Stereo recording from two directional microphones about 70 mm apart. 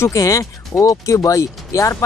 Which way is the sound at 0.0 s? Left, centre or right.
Left.